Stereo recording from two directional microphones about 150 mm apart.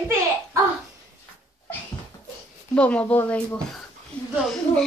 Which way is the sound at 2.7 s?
10° left (ahead or behind).